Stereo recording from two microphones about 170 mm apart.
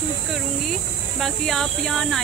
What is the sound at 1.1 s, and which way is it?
Speech, centre (ahead or behind).